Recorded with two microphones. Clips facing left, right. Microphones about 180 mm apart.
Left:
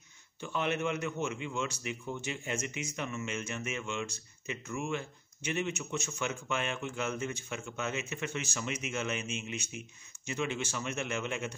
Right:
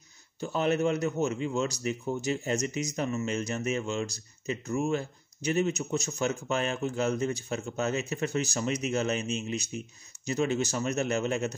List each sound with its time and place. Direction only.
0.4 s a man's voice: 40° right (ahead or behind)